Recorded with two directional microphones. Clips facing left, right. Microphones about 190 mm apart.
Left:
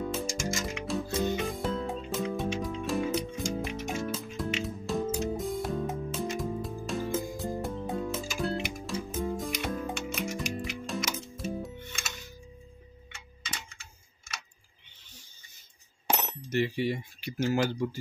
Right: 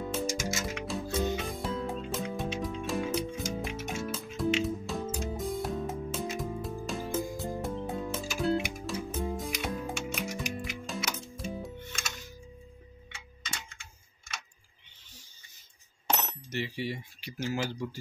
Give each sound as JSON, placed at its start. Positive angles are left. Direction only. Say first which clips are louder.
{"t": 0.1, "sound": "music", "louder": "even", "side_deg": -5}
{"t": 16.1, "sound": "a sound", "louder": "left 1 dB", "side_deg": 10}
{"t": 16.5, "sound": "speech", "louder": "left 6 dB", "side_deg": 55}